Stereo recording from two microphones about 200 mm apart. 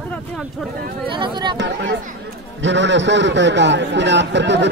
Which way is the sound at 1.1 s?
25° right (ahead or behind).